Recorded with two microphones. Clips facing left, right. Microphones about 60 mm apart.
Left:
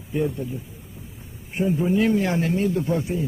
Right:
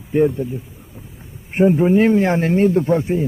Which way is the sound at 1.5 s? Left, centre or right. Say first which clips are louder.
Right 8 dB; right.